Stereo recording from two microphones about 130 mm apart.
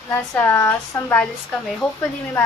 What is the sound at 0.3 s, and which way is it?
A woman's voice, 15° left (ahead or behind).